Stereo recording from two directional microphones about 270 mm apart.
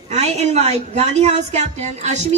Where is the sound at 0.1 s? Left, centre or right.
Right.